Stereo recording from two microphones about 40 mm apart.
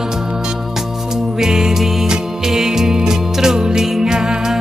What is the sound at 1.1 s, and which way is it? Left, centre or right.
Music, centre.